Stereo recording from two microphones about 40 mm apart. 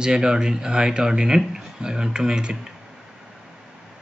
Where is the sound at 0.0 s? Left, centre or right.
Centre.